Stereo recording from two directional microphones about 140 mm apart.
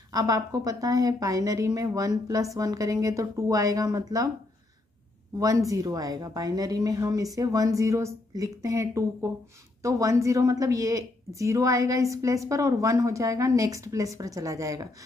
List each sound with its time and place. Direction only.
0.1 s a woman's voice: 25° right (ahead or behind)
5.4 s a woman's voice: 25° right (ahead or behind)